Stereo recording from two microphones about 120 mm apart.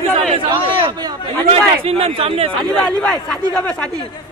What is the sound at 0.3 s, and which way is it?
Chatter, 45° right (ahead or behind).